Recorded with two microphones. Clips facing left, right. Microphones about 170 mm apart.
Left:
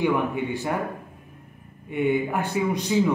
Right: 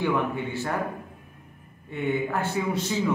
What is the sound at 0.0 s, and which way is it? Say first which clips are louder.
Speech: left 3 dB; 15° left (ahead or behind).